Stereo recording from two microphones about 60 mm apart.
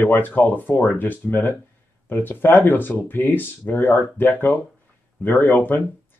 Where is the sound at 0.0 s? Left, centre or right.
Left.